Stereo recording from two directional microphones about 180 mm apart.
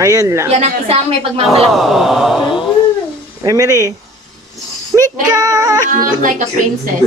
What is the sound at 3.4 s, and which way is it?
Speech, 20° right (ahead or behind).